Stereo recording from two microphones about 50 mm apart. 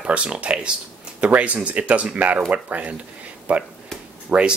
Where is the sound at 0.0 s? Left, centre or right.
Right.